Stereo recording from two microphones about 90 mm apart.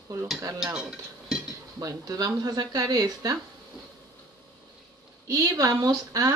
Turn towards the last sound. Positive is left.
turn(degrees=-40)  # may be behind; listen again after turning